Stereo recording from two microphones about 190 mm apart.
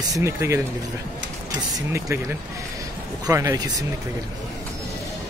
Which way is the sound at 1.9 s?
15° right (ahead or behind).